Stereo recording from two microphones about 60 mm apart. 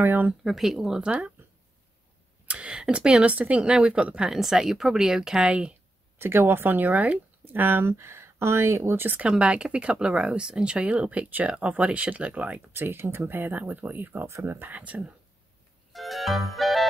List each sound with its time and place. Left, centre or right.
0.0 s speech: right
0.3 s speech: centre
2.4 s speech: right
6.1 s speech: right
7.9 s speech: right
9.4 s speech: centre
12.7 s speech: right
14.2 s speech: right
14.7 s speech: right
15.9 s music: centre